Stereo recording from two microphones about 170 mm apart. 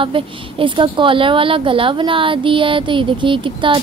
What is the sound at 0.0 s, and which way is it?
A woman's voice, 30° right (ahead or behind).